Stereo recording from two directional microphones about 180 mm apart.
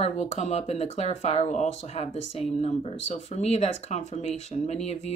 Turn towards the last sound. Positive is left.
turn(degrees=35)  # may be behind; listen again after turning